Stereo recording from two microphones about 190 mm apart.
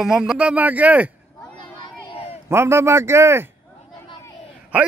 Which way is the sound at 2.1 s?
30° left (ahead or behind).